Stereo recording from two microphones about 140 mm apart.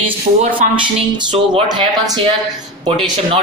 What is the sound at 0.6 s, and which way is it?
Speech, 70° right (ahead or behind).